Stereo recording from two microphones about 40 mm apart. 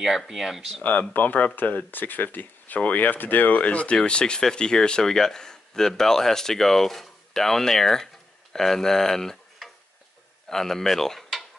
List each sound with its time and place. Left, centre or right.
0.3 s speech: centre
1.1 s speech: left
3.6 s speech: left; by 11.2 s centre